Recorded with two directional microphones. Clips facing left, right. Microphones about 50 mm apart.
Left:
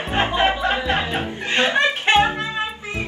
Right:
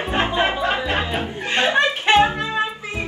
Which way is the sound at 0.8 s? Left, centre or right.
Left.